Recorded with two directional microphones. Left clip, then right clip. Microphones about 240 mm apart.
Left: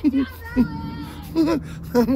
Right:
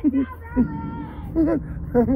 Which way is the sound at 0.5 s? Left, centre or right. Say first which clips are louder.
Left 1 dB; left.